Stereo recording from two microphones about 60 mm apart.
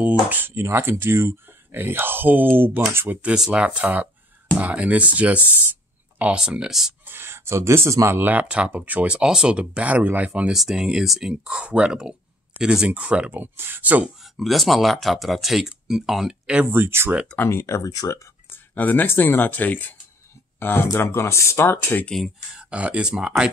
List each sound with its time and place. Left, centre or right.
0.0 s speech: right
0.5 s speech: right
3.2 s speech: centre
6.4 s speech: centre
7.1 s speech: right
8.2 s speech: right
10.5 s speech: centre; by 14.1 s right
14.2 s speech: centre
16.7 s speech: right
17.4 s speech: left
17.8 s speech: left
18.5 s speech: left
22.6 s speech: right